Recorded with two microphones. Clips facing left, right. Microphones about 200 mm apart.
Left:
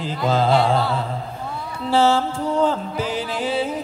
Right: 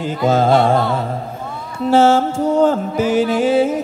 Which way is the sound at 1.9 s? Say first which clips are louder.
Right 5 dB; 50° right (ahead or behind).